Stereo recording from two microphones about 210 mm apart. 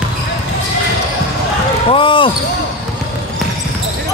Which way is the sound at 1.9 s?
25° left (ahead or behind).